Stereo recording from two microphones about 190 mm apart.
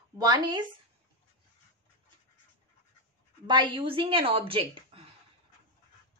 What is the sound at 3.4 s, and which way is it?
A woman's voice, 25° right (ahead or behind).